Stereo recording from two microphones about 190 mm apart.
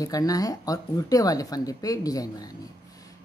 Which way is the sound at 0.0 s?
20° left (ahead or behind).